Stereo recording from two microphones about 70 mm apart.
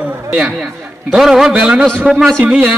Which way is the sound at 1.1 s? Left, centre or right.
Centre.